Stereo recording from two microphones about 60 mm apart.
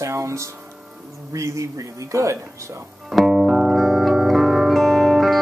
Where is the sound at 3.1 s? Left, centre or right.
Centre.